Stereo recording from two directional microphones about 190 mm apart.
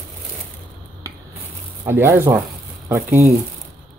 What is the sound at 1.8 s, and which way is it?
Speech, 10° right (ahead or behind).